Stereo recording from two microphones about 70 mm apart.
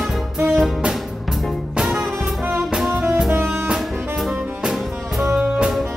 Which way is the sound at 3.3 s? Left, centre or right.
Right.